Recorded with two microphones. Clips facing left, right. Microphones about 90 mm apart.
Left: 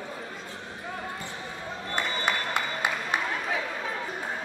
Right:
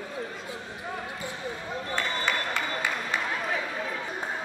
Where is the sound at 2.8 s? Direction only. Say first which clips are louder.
Left 3 dB; 20° left (ahead or behind).